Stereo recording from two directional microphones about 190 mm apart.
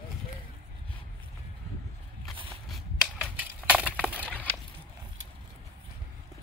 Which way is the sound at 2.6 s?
Centre (ahead or behind).